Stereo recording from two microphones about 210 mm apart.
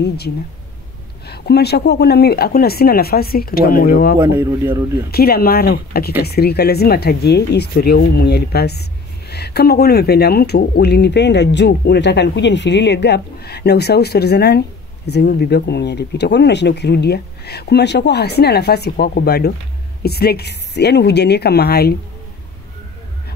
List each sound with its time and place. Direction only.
1.2 s speech: 50° left (ahead or behind)
4.2 s speech: 15° right (ahead or behind)
5.1 s speech: 45° left (ahead or behind)